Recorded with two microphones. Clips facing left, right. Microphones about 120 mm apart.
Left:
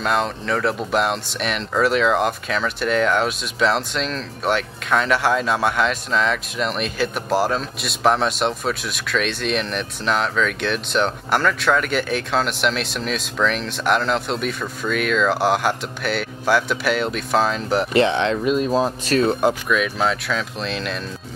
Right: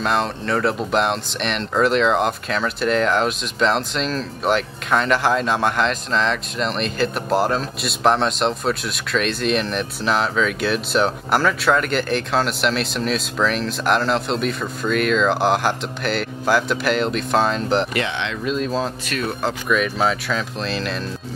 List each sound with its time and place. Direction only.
0.0 s speech: centre (ahead or behind)
17.9 s speech: 35° left (ahead or behind)
18.4 s speech: 15° left (ahead or behind)
19.0 s speech: 35° left (ahead or behind)
19.7 s speech: centre (ahead or behind)